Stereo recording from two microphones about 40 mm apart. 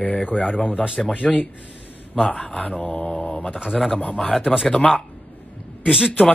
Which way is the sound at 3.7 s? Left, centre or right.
Centre.